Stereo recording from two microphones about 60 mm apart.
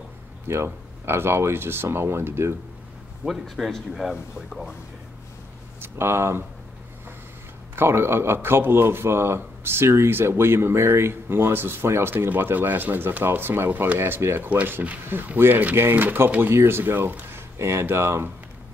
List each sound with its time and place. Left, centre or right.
0.5 s a man's voice: right
3.3 s speech: centre
5.8 s speech: right
7.7 s a man's voice: right
17.6 s speech: right